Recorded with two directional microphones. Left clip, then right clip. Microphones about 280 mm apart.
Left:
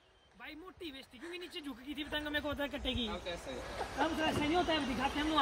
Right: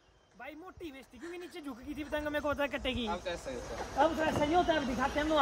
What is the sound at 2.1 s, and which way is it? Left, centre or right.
Speech, centre.